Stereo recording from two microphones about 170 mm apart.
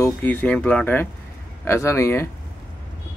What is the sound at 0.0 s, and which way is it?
A man's voice, 10° left (ahead or behind).